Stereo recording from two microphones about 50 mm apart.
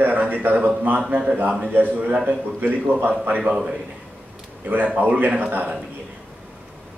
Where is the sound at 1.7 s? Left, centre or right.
Right.